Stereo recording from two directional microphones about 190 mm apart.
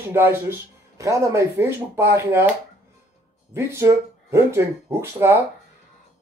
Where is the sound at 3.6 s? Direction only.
15° right (ahead or behind).